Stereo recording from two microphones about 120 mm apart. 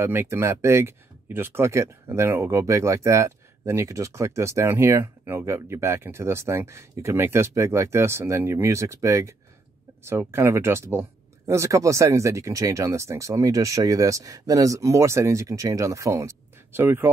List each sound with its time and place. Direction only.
0.0 s speech: 20° right (ahead or behind)